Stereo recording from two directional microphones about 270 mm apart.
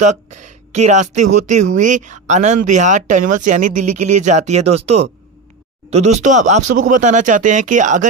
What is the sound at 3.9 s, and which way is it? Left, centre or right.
Speech, right.